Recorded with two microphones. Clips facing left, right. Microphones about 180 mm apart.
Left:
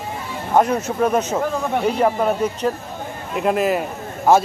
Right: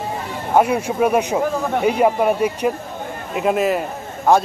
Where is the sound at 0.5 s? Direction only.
10° right (ahead or behind).